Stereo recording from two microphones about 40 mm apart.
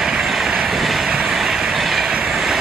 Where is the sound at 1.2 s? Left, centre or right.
Centre.